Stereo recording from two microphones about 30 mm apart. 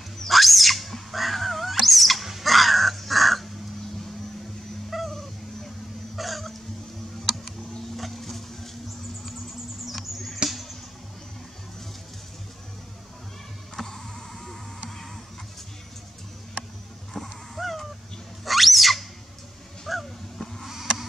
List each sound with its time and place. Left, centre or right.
0.3 s a sound: centre
4.8 s dog: centre
6.1 s hiccup: centre
7.9 s boat: centre
9.8 s mouse: centre
13.7 s a sound: centre
17.1 s dog: centre
17.6 s crow: centre
18.4 s a sound: centre